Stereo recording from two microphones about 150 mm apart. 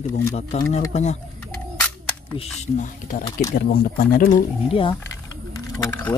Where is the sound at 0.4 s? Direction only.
50° left (ahead or behind).